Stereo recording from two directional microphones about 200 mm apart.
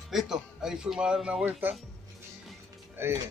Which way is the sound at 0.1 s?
Centre (ahead or behind).